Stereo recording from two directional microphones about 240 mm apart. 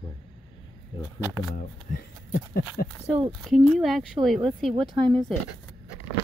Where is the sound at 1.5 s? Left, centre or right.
Left.